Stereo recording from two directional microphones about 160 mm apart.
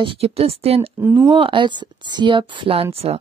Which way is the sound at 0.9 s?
10° right (ahead or behind).